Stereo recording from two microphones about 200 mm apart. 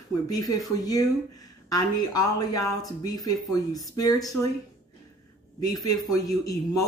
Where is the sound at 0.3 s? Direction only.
15° left (ahead or behind).